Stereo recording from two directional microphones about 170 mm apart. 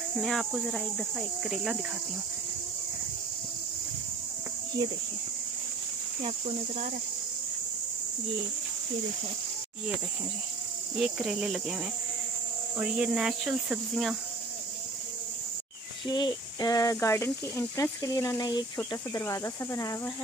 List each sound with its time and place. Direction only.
0.2 s speech: centre (ahead or behind)
11.0 s speech: 5° right (ahead or behind)
16.1 s speech: 25° left (ahead or behind)